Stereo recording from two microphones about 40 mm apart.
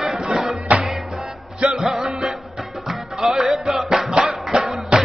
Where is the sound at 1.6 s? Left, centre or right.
Centre.